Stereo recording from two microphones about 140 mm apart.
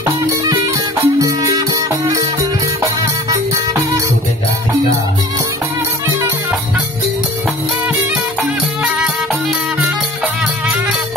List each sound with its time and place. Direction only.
1.0 s music: 20° right (ahead or behind)